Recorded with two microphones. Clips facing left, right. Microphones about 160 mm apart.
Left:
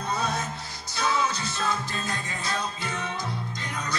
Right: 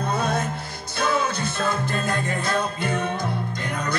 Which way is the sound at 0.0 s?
55° right (ahead or behind).